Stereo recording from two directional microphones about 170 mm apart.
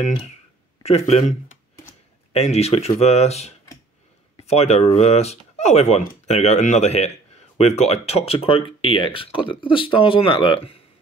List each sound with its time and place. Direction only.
0.8 s speech: 40° left (ahead or behind)
2.3 s speech: 40° left (ahead or behind)